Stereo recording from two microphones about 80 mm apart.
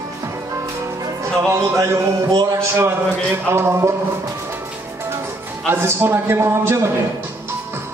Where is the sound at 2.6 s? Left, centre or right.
Right.